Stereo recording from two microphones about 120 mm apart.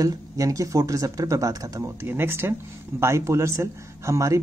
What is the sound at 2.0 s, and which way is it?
Speech, 20° right (ahead or behind).